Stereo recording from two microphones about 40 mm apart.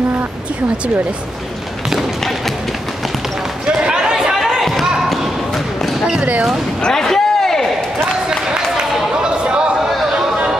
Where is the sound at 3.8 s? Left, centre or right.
Centre.